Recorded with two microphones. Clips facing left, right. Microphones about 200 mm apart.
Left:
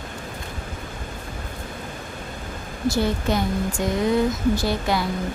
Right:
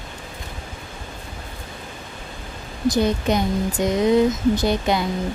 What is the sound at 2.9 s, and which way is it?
Speech, 20° right (ahead or behind).